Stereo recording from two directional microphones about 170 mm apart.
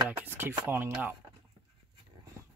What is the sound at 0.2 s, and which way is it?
Speech, 10° right (ahead or behind).